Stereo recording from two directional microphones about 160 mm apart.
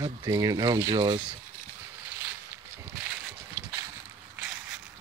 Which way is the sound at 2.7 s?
15° right (ahead or behind).